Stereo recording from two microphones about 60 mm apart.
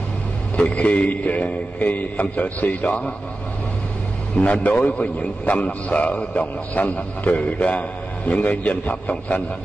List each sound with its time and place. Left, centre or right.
0.6 s a man's voice: left
4.4 s a man's voice: left